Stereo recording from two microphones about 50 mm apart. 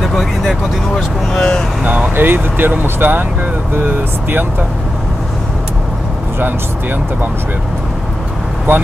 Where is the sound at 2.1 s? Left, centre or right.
Right.